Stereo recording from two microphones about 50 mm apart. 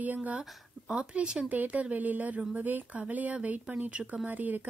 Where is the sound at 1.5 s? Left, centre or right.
Right.